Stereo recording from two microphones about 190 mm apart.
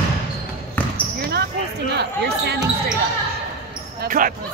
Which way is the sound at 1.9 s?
60° right (ahead or behind).